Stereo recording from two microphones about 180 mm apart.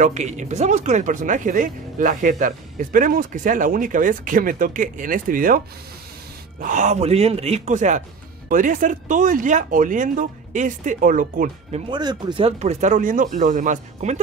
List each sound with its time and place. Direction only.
0.0 s speech: 40° right (ahead or behind)
6.6 s speech: 45° right (ahead or behind)
11.9 s speech: 25° right (ahead or behind); by 14.2 s 40° right (ahead or behind)